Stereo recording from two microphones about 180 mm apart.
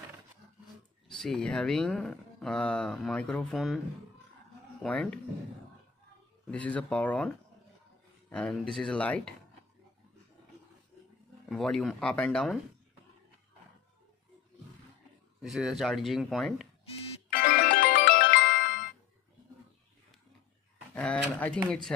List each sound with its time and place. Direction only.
1.0 s speech: centre (ahead or behind)
4.8 s speech: 5° left (ahead or behind)
6.4 s speech: 5° left (ahead or behind)
11.4 s speech: centre (ahead or behind)
15.4 s speech: centre (ahead or behind)
17.3 s music: 55° left (ahead or behind)
20.9 s speech: 5° left (ahead or behind)